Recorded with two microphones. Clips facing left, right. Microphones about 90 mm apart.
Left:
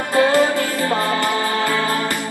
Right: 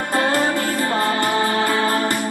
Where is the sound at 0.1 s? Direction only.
40° right (ahead or behind).